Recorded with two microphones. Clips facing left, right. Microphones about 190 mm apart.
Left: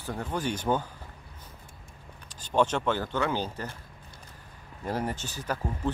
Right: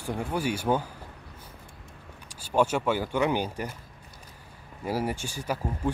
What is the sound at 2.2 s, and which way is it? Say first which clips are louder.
Speech: right 1 dB; 10° right (ahead or behind).